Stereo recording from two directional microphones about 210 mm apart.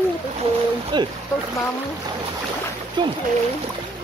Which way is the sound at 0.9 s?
20° right (ahead or behind).